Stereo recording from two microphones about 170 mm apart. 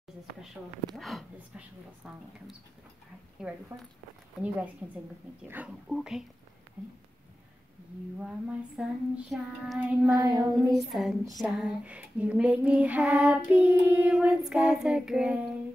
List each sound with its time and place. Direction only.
0.6 s child singing: centre (ahead or behind)
3.4 s child singing: 5° right (ahead or behind)
5.9 s child singing: centre (ahead or behind)
8.2 s child singing: 5° right (ahead or behind)
10.1 s child singing: 20° right (ahead or behind)
10.7 s child singing: centre (ahead or behind)